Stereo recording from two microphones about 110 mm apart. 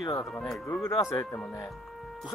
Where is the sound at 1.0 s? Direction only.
30° left (ahead or behind).